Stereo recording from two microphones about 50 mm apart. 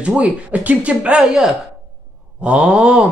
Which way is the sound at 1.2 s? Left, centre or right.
Centre.